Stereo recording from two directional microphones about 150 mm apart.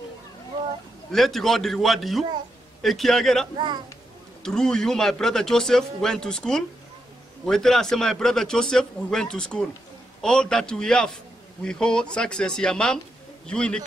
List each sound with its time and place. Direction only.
1.1 s speech: centre (ahead or behind)
3.5 s speech: 30° right (ahead or behind)
4.4 s a man's voice: 5° left (ahead or behind)